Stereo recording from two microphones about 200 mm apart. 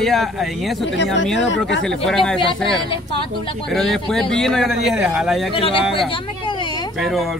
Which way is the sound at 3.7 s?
Centre (ahead or behind).